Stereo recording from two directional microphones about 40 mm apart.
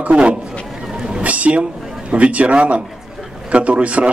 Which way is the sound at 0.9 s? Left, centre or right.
Centre.